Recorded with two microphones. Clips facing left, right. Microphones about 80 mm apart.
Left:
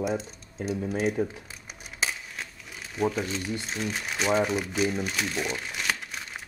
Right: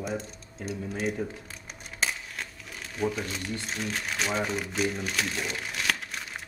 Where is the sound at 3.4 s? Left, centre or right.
Centre.